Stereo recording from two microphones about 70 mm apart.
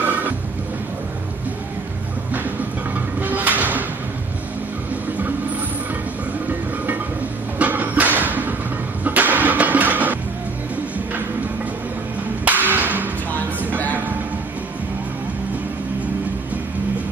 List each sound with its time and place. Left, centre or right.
0.0 s music: right
3.2 s music: right
7.5 s music: right
12.4 s a sound: right